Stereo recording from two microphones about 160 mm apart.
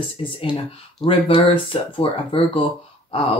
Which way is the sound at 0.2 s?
35° left (ahead or behind).